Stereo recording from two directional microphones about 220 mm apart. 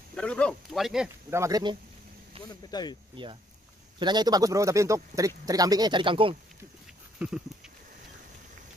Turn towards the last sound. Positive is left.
turn(degrees=-5)  # may be behind; listen again after turning